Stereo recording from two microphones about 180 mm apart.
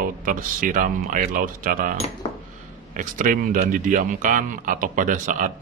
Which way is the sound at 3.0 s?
50° right (ahead or behind).